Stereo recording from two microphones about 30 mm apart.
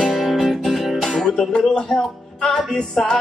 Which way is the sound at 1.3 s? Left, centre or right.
Centre.